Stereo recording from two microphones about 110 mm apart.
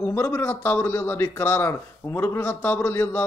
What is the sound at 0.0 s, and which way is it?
A man's voice, 20° left (ahead or behind).